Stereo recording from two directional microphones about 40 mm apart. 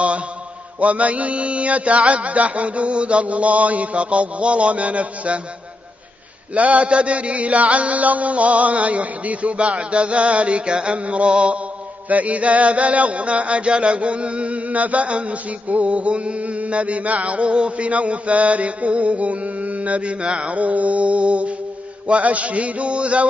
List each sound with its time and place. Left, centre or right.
0.7 s music: right
6.5 s music: right
11.1 s mantra: right
12.1 s music: right
20.2 s mantra: right
20.5 s music: right